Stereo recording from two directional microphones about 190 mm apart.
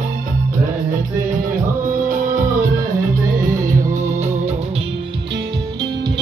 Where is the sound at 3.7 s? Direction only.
40° right (ahead or behind).